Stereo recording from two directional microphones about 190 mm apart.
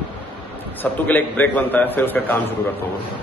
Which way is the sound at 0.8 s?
10° left (ahead or behind).